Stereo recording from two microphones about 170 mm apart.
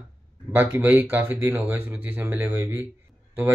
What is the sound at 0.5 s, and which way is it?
Speech, 10° right (ahead or behind).